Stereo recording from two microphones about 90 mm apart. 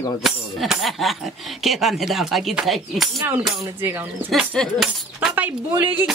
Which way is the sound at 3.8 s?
25° right (ahead or behind).